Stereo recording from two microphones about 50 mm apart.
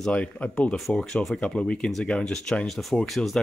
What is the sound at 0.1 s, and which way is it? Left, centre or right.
Speech, left.